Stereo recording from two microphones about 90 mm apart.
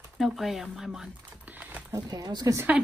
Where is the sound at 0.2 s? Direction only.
Centre (ahead or behind); by 1.9 s 15° right (ahead or behind).